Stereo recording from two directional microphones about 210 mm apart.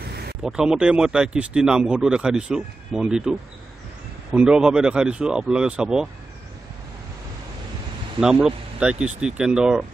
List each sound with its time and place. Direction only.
0.1 s a sound: 50° right (ahead or behind)
0.4 s speech: 5° right (ahead or behind)
8.2 s speech: 5° right (ahead or behind)